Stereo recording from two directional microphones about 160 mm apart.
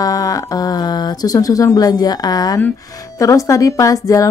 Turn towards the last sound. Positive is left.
turn(degrees=20)  # may be behind; listen again after turning